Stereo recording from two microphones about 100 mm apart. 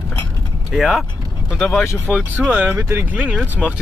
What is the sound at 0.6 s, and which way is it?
Speech, centre (ahead or behind).